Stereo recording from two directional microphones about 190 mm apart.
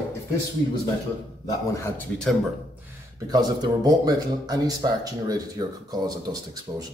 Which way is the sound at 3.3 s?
20° right (ahead or behind).